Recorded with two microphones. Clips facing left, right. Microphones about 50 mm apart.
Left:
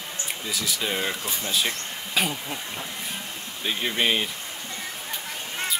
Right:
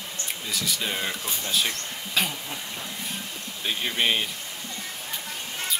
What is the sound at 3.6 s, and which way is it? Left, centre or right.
Speech, centre.